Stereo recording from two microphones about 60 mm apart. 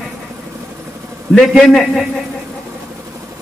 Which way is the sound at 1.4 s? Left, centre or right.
Centre.